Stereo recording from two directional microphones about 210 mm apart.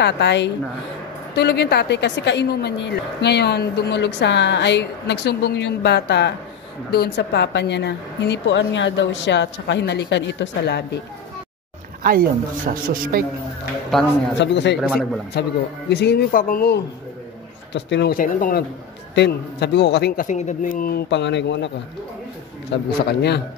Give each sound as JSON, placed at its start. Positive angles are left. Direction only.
{"t": 0.0, "sound": "a man's voice", "side_deg": 55}
{"t": 12.0, "sound": "speech", "side_deg": -45}
{"t": 14.4, "sound": "speech", "side_deg": 55}
{"t": 14.8, "sound": "speech", "side_deg": 0}
{"t": 15.3, "sound": "a man's voice", "side_deg": 50}
{"t": 17.7, "sound": "a man's voice", "side_deg": 55}
{"t": 19.1, "sound": "a man's voice", "side_deg": 55}